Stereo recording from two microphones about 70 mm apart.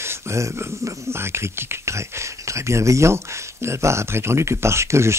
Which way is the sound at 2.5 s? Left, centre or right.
Right.